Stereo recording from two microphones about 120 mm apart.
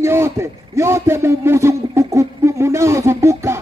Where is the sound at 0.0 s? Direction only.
20° right (ahead or behind).